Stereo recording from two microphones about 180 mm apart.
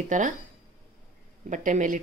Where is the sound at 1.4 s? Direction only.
45° right (ahead or behind).